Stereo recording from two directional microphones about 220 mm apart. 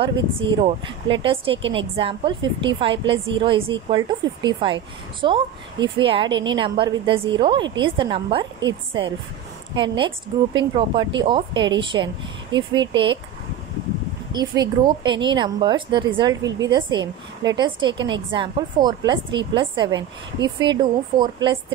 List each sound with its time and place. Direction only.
0.0 s a woman's voice: 20° right (ahead or behind)
9.8 s a woman's voice: 20° right (ahead or behind)
14.3 s a woman's voice: 20° right (ahead or behind)